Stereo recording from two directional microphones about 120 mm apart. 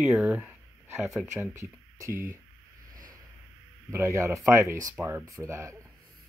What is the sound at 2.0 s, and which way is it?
Speech, 25° right (ahead or behind).